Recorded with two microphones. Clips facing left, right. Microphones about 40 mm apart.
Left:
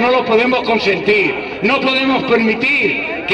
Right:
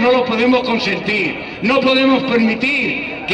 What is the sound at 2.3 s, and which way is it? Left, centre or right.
Speech, centre.